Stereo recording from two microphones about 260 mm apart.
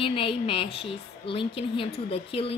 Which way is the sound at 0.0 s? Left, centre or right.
Left.